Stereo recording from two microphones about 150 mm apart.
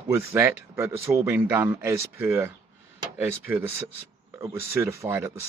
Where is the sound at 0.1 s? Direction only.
15° right (ahead or behind).